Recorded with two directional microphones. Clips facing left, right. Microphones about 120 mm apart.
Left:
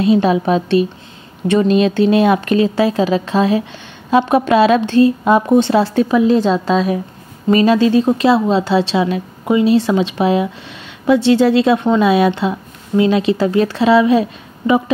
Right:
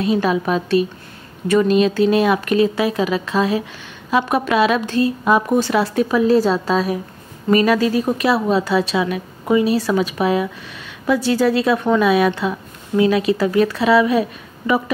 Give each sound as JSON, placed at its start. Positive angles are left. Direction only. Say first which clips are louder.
{"t": 0.0, "sound": "a woman's voice", "louder": "left 5 dB", "side_deg": 25}
{"t": 6.4, "sound": "a woman's voice", "louder": "left 3 dB", "side_deg": -5}
{"t": 7.4, "sound": "a woman's voice", "louder": "left 3 dB", "side_deg": 25}